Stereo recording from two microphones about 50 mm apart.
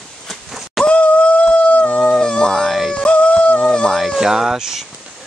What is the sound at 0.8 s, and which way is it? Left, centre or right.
Howl, left.